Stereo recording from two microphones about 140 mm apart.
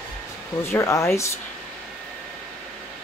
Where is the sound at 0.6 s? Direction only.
20° left (ahead or behind).